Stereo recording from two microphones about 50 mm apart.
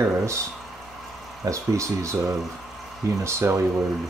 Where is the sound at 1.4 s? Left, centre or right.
Right.